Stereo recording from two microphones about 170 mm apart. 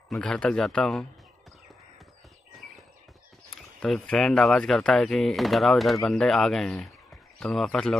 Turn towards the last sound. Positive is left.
turn(degrees=0)  # may be behind; listen again after turning